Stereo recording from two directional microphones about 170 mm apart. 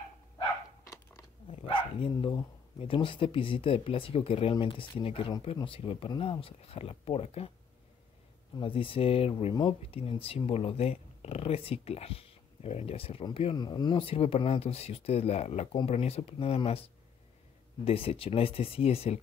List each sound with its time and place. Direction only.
1.5 s speech: 30° left (ahead or behind)
8.5 s speech: 30° left (ahead or behind)